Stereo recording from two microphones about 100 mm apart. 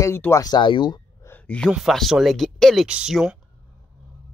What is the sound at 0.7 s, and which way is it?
Speech, 50° left (ahead or behind).